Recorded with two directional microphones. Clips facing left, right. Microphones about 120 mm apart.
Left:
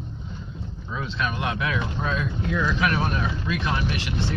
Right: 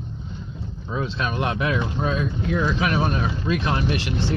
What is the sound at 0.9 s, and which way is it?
Speech, 30° right (ahead or behind).